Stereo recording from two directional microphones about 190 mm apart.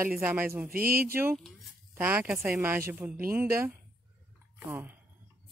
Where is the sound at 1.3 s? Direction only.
Centre (ahead or behind).